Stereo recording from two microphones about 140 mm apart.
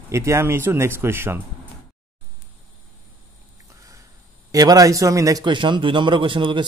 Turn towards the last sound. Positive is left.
turn(degrees=-35)  # may be behind; listen again after turning